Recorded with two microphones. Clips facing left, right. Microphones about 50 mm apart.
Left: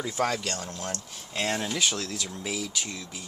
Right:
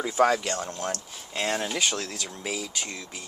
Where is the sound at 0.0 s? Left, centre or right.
Centre.